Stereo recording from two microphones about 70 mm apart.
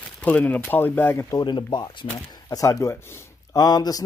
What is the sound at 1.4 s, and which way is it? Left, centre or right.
Speech, left.